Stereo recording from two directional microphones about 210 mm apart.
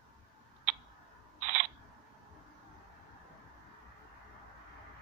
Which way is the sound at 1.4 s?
35° right (ahead or behind).